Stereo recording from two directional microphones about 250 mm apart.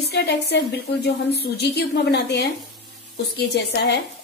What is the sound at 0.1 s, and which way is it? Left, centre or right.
A woman's voice, left.